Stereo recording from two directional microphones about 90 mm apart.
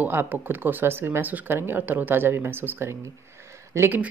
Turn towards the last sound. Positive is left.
turn(degrees=-30)  # may be behind; listen again after turning